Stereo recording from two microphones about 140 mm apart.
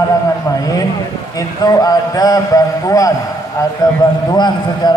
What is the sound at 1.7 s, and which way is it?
A man's voice, 25° left (ahead or behind).